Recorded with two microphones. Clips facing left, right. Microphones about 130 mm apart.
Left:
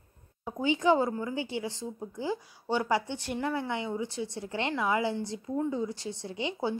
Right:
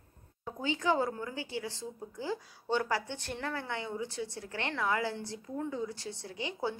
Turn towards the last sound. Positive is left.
turn(degrees=20)  # may be behind; listen again after turning